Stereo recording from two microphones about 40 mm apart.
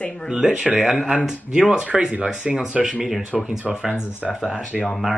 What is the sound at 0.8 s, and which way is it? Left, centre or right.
Speech, centre.